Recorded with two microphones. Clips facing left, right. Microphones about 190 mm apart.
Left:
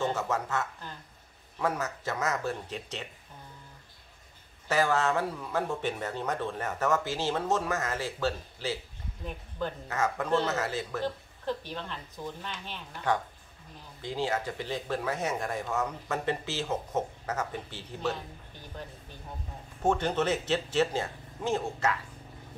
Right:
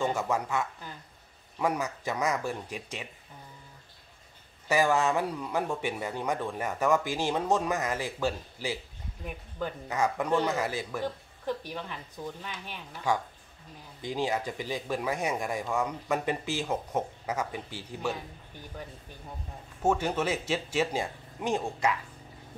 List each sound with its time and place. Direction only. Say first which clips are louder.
0.0 s speech: right 1 dB; 10° right (ahead or behind)
4.6 s speech: right 1 dB; 15° right (ahead or behind)
19.8 s speech: even; 10° right (ahead or behind)